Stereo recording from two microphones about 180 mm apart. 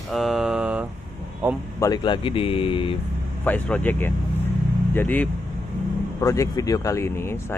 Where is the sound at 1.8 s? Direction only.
25° left (ahead or behind).